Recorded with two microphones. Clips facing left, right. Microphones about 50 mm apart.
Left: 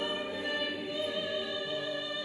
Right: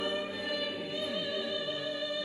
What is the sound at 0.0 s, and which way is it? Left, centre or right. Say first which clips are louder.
Music: even; left.